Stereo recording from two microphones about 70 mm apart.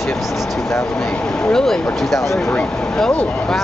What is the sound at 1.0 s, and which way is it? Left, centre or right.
Speech, centre.